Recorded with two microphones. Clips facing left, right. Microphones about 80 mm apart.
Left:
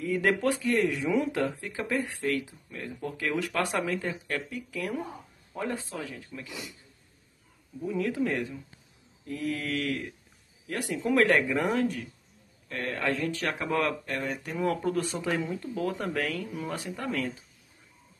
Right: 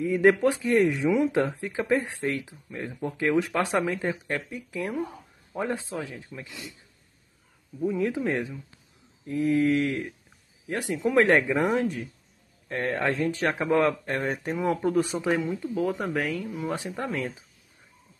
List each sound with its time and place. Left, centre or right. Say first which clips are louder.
0.0 s speech: right 6 dB; centre
7.8 s speech: right 3 dB; centre
14.1 s speech: right 4 dB; right
14.6 s speech: right 3 dB; centre
15.3 s speech: right 4 dB; centre
16.7 s speech: even; right